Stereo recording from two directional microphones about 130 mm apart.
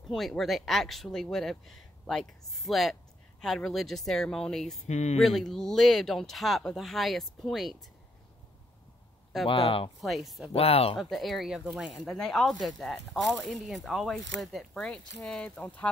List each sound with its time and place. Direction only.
0.1 s speech: centre (ahead or behind)
4.8 s speech: 60° left (ahead or behind)
5.2 s speech: centre (ahead or behind)
9.5 s speech: 45° left (ahead or behind)
10.0 s speech: centre (ahead or behind)
10.5 s speech: 50° left (ahead or behind)
11.0 s speech: centre (ahead or behind)